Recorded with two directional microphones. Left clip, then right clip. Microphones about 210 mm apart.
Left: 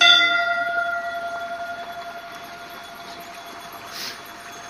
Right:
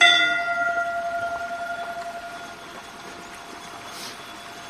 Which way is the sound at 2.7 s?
15° right (ahead or behind).